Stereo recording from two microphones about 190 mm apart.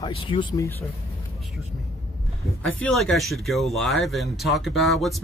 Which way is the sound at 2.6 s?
Centre (ahead or behind).